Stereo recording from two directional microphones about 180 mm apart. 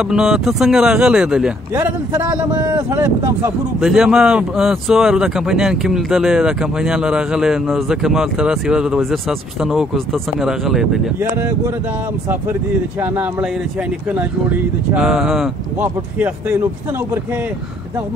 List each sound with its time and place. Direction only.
0.0 s speech: 5° right (ahead or behind)
3.8 s speech: 5° right (ahead or behind)
11.3 s speech: 10° right (ahead or behind)
13.0 s speech: 10° right (ahead or behind)